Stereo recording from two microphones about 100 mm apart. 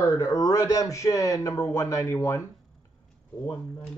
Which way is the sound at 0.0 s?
35° left (ahead or behind).